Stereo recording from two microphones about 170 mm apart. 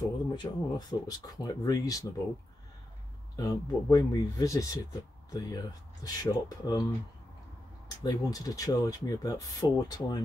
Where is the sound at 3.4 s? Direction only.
20° left (ahead or behind).